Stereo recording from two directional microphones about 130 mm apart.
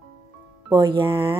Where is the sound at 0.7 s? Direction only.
35° right (ahead or behind).